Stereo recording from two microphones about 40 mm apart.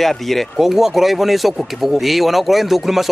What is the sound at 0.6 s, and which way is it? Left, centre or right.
Speech, centre.